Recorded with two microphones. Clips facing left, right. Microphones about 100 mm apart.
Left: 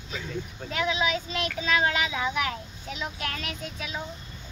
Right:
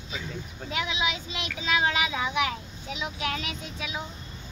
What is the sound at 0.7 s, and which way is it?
Speech, 10° right (ahead or behind).